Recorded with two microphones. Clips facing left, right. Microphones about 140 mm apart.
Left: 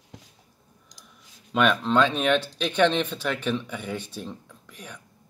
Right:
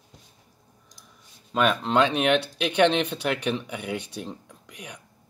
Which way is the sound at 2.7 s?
65° right (ahead or behind).